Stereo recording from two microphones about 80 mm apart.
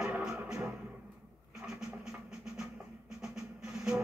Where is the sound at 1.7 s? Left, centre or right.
Centre.